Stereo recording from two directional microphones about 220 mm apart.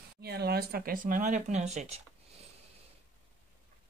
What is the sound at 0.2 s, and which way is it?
Speech, 45° right (ahead or behind).